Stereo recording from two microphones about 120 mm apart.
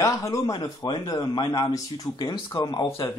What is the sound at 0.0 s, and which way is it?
A man's voice, 25° left (ahead or behind).